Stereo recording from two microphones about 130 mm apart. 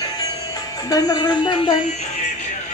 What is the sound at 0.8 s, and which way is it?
Speech, 30° left (ahead or behind).